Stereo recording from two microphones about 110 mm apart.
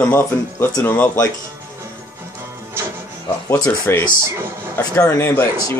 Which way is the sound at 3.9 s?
25° left (ahead or behind).